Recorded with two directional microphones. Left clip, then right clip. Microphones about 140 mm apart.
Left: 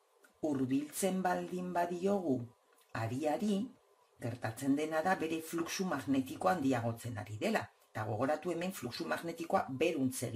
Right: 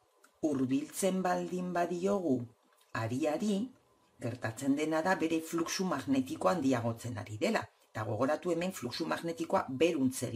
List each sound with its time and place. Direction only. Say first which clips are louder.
0.4 s speech: right 2 dB; 30° right (ahead or behind)